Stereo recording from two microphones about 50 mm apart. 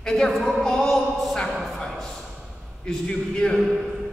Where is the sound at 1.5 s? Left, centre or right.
Centre.